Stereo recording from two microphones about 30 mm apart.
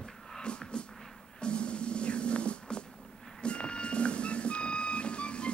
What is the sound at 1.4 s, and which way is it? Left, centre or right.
Music, left.